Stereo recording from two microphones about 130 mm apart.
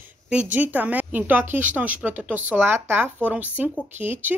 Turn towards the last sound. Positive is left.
turn(degrees=-15)  # may be behind; listen again after turning